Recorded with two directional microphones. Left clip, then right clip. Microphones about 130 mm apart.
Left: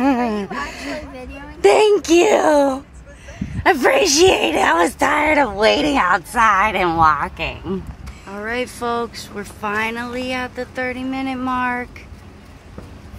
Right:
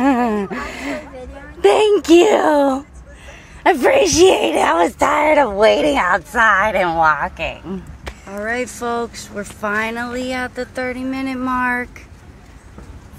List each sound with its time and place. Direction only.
0.0 s gasp: centre (ahead or behind)
0.4 s gasp: 15° right (ahead or behind)
1.6 s a sound: 15° right (ahead or behind)
3.6 s speech: 5° right (ahead or behind)
6.9 s a woman's voice: 15° left (ahead or behind)
8.3 s speech: 5° right (ahead or behind)